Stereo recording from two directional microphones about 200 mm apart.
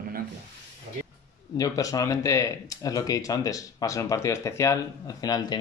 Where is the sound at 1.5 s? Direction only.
15° left (ahead or behind).